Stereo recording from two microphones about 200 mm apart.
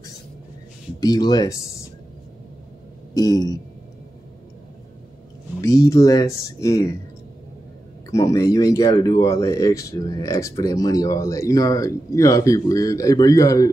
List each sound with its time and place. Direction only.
1.0 s speech: 20° left (ahead or behind)
3.2 s speech: 20° left (ahead or behind)
5.6 s speech: 15° left (ahead or behind)
8.1 s speech: 15° left (ahead or behind)